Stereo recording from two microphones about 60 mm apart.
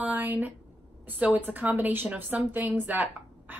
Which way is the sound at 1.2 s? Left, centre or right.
Right.